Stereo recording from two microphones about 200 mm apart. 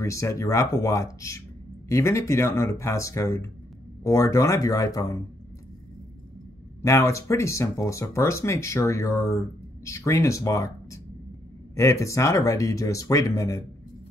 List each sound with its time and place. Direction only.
0.0 s speech: 15° left (ahead or behind)
6.8 s speech: 15° left (ahead or behind)